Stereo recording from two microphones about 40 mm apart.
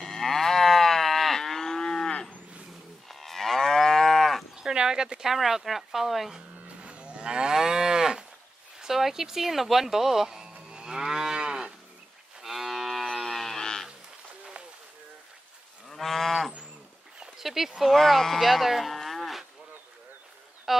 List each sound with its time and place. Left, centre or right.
0.0 s moo: centre
3.1 s moo: centre
4.6 s a sound: centre
5.3 s speech: centre
6.8 s moo: right
8.7 s speech: centre
10.7 s moo: centre
12.4 s moo: centre
13.2 s cattle: centre
15.9 s moo: centre
17.4 s speech: centre
17.9 s speech: centre
20.7 s a sound: centre